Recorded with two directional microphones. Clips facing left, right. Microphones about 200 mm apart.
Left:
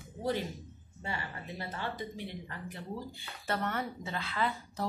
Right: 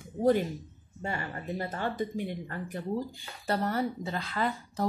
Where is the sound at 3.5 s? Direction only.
35° right (ahead or behind).